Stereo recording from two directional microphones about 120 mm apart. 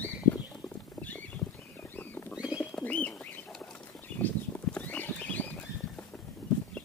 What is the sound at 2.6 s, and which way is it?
Bird, 15° left (ahead or behind).